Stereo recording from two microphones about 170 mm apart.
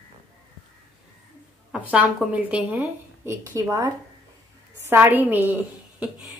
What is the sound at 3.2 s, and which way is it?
A woman's voice, 20° right (ahead or behind).